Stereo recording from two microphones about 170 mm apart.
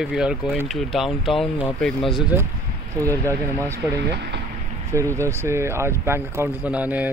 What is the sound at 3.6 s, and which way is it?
Speech, 15° right (ahead or behind).